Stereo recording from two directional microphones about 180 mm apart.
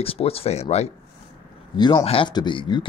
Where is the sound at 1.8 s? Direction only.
25° left (ahead or behind).